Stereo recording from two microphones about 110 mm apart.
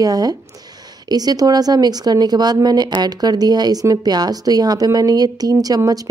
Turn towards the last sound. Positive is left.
turn(degrees=-35)  # may be behind; listen again after turning